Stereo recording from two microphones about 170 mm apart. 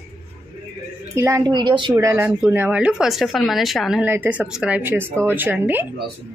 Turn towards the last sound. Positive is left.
turn(degrees=-10)  # may be behind; listen again after turning